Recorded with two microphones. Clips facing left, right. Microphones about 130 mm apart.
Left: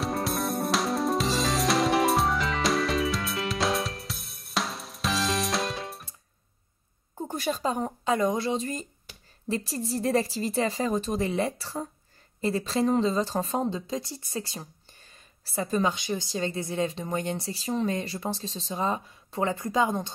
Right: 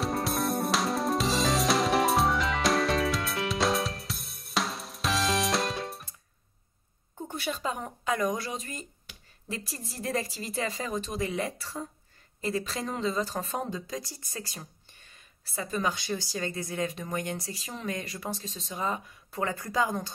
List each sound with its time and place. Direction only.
0.0 s music: centre (ahead or behind)
7.2 s speech: 40° left (ahead or behind)
15.9 s speech: 20° left (ahead or behind)